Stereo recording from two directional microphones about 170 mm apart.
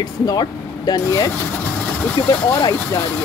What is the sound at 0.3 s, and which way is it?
Speech, 20° left (ahead or behind).